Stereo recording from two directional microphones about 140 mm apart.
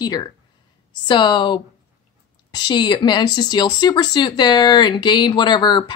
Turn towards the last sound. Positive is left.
turn(degrees=30)  # may be behind; listen again after turning